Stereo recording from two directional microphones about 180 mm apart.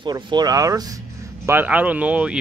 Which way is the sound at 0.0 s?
25° right (ahead or behind).